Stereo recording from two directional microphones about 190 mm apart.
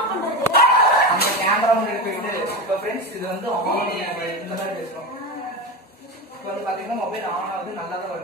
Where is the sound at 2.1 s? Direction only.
55° left (ahead or behind).